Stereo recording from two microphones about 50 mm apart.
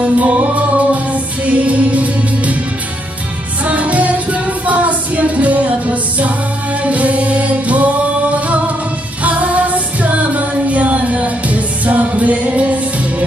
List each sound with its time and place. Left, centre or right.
0.0 s music: right
3.6 s music: right
9.2 s female singing: right